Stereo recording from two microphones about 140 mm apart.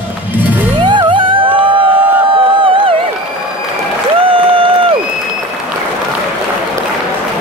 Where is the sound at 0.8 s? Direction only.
35° right (ahead or behind).